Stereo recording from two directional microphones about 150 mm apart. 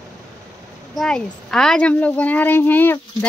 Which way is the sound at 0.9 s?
5° left (ahead or behind).